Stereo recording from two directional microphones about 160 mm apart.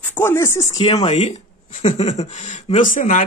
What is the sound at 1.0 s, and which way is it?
Speech, 45° left (ahead or behind).